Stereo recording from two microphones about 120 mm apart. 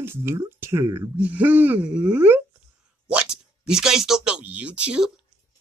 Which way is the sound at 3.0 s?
5° right (ahead or behind).